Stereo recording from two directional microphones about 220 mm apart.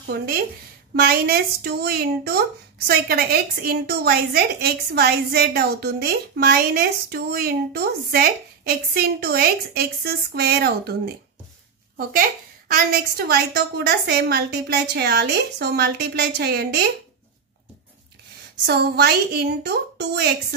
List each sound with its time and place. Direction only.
0.0 s a woman's voice: 45° right (ahead or behind)
12.0 s a woman's voice: 40° right (ahead or behind)
18.7 s a woman's voice: 45° right (ahead or behind)